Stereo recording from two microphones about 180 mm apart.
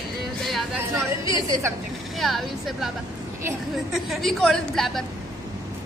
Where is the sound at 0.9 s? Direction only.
15° right (ahead or behind).